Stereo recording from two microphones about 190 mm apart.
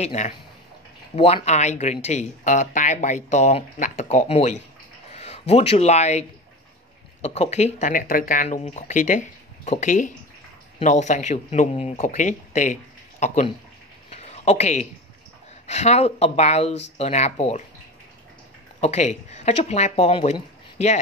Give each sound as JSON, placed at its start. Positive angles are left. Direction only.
{"t": 0.0, "sound": "speech", "side_deg": 40}
{"t": 14.1, "sound": "a sound", "side_deg": 35}
{"t": 15.6, "sound": "speech", "side_deg": 35}
{"t": 18.8, "sound": "speech", "side_deg": 35}